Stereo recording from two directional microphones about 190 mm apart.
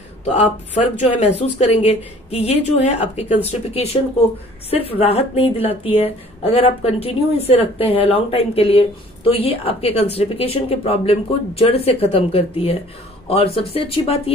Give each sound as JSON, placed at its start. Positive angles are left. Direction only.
{"t": 0.2, "sound": "a woman's voice", "side_deg": 35}